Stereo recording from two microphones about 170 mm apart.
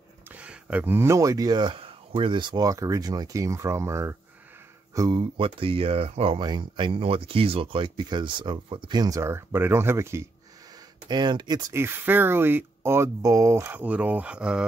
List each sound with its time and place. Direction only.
0.3 s speech: 5° right (ahead or behind)
11.1 s speech: 25° right (ahead or behind); by 14.7 s 5° right (ahead or behind)